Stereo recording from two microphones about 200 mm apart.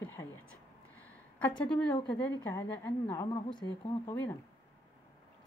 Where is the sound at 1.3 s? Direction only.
5° left (ahead or behind); by 3.7 s 20° left (ahead or behind).